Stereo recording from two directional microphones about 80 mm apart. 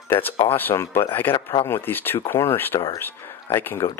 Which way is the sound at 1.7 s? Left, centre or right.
Left.